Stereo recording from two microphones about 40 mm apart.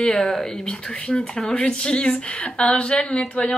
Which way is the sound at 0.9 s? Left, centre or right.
Left.